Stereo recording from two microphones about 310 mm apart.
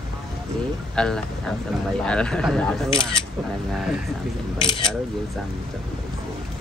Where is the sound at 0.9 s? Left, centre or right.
Centre.